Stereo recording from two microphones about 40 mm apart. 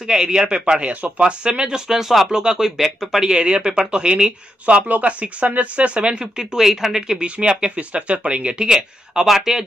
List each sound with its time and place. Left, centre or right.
0.0 s speech: centre
1.9 s speech: centre
3.3 s speech: right
4.6 s speech: right; by 7.2 s centre
7.2 s speech: right
8.6 s speech: centre